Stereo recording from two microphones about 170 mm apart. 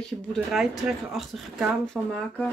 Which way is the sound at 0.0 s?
Centre (ahead or behind).